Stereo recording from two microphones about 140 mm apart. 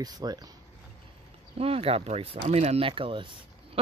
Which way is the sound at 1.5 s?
45° right (ahead or behind).